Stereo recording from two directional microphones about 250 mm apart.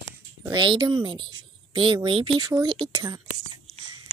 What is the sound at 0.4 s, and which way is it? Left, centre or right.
Speech, centre.